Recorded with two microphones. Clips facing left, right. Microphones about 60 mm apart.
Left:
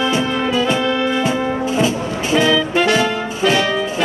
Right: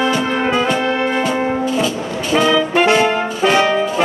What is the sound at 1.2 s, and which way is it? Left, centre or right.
Brass instrument, left.